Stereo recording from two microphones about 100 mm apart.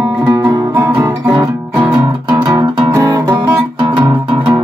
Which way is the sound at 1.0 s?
35° right (ahead or behind).